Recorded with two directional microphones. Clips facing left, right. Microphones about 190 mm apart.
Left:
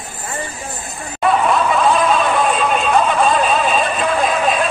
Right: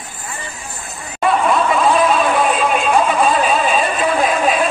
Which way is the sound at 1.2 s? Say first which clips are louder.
Even; centre (ahead or behind).